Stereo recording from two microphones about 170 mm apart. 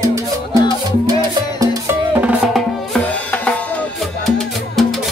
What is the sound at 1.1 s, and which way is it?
Music, 25° right (ahead or behind).